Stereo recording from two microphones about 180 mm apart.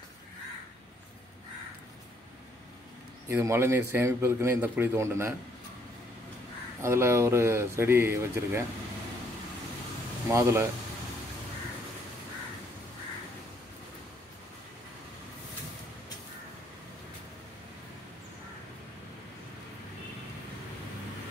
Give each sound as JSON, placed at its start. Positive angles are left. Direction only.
{"t": 3.3, "sound": "a man's voice", "side_deg": -15}
{"t": 6.8, "sound": "a man's voice", "side_deg": -15}
{"t": 10.2, "sound": "a man's voice", "side_deg": -15}